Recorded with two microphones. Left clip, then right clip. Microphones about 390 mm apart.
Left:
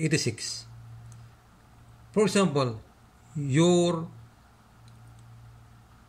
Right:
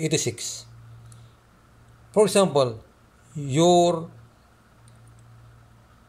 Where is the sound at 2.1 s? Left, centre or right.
Centre.